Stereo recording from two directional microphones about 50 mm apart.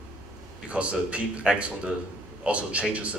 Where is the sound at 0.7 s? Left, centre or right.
Right.